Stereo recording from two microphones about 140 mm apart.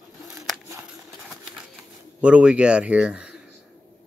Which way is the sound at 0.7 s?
15° right (ahead or behind).